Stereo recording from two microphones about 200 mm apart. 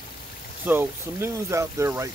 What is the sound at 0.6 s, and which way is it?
Speech, 10° right (ahead or behind).